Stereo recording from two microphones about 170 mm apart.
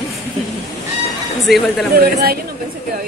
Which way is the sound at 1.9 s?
65° right (ahead or behind).